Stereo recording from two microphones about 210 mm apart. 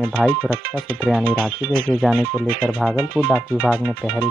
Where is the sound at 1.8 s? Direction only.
10° right (ahead or behind).